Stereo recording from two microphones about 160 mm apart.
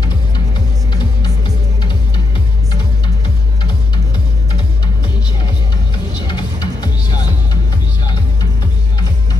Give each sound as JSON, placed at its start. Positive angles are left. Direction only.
{"t": 6.1, "sound": "music", "side_deg": 30}